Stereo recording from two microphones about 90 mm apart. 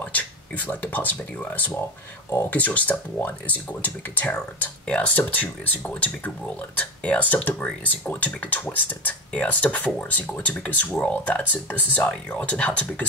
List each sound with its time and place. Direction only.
0.0 s speech: 20° left (ahead or behind)